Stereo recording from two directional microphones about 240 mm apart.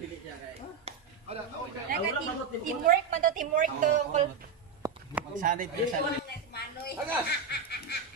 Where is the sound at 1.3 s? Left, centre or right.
Right.